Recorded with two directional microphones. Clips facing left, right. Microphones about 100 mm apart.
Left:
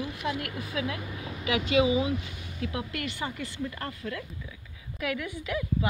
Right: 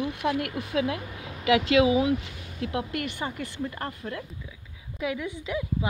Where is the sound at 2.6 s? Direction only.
55° right (ahead or behind).